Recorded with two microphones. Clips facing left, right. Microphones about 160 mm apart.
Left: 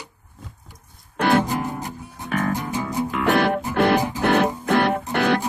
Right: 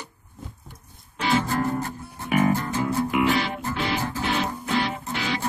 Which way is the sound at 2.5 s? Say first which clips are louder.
Left 1 dB; 15° left (ahead or behind).